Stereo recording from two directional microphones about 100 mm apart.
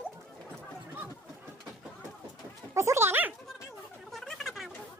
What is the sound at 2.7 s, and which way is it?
Dog, 30° right (ahead or behind).